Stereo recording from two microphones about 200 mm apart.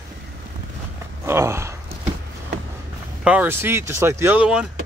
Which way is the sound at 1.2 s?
15° right (ahead or behind).